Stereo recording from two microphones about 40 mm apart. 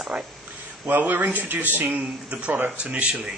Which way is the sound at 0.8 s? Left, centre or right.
Right.